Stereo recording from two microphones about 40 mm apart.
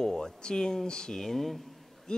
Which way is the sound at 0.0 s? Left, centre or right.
Centre.